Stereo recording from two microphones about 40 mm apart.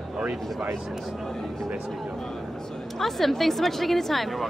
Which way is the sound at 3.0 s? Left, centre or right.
Centre.